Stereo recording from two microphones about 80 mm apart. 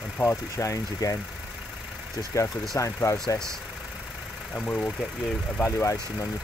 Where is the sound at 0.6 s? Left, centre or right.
Left.